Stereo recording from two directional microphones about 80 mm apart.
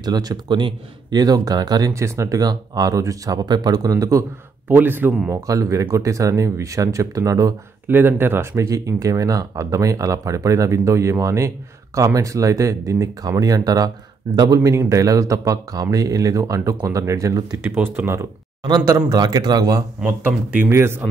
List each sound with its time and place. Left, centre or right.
0.0 s speech: right
2.0 s speech: right
4.6 s speech: right
5.3 s speech: right
7.9 s speech: right
8.5 s speech: right
14.6 s speech: right
17.8 s speech: right
18.9 s speech: right
20.1 s speech: right